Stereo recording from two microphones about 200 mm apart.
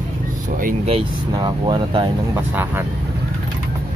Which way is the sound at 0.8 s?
25° right (ahead or behind).